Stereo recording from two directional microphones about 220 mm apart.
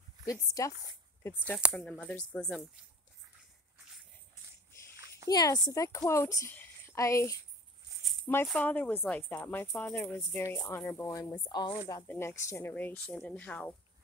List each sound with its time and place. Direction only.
0.3 s speech: 15° left (ahead or behind)
1.5 s speech: centre (ahead or behind)
4.9 s a sound: 15° right (ahead or behind)
5.3 s speech: 15° left (ahead or behind)
8.5 s speech: 5° left (ahead or behind)